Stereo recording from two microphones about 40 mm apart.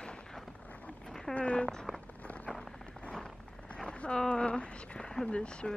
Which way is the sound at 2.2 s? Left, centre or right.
Left.